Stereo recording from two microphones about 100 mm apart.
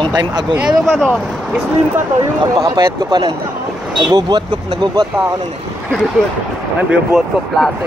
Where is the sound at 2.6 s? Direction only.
45° right (ahead or behind).